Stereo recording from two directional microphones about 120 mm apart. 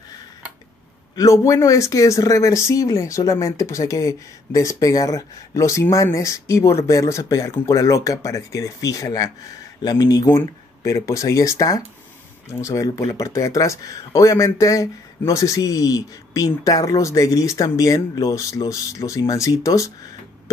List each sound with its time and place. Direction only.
1.1 s speech: 25° left (ahead or behind)
10.2 s speech: 20° left (ahead or behind)